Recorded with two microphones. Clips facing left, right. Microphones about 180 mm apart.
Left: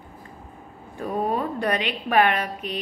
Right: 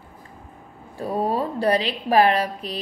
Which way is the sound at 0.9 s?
35° right (ahead or behind).